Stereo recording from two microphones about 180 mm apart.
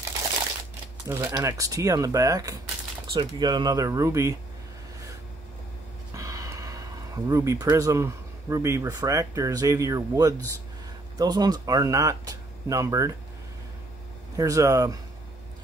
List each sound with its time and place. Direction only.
1.0 s speech: 15° right (ahead or behind)
6.1 s gasp: 20° right (ahead or behind)
7.2 s speech: 20° right (ahead or behind)
14.3 s speech: 20° right (ahead or behind)